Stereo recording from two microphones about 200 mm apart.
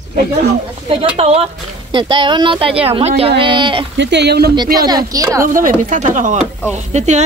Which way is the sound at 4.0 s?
60° right (ahead or behind).